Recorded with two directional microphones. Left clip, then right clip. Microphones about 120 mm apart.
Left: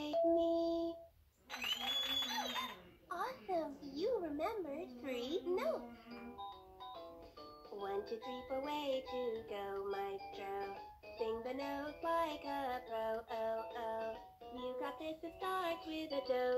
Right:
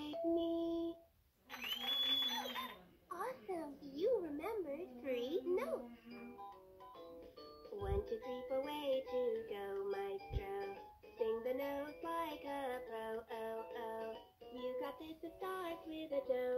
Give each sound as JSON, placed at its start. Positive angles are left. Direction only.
{"t": 0.0, "sound": "music", "side_deg": 20}
{"t": 1.5, "sound": "a sound", "side_deg": 20}
{"t": 7.7, "sound": "music", "side_deg": 20}